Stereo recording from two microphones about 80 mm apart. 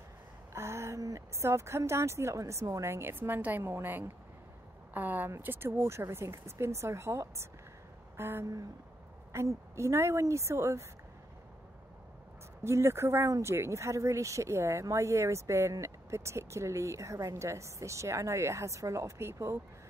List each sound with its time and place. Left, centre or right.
0.5 s speech: right
12.6 s speech: right